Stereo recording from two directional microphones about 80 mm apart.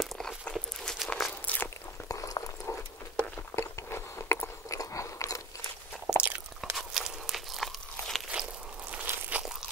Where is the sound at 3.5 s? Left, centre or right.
Left.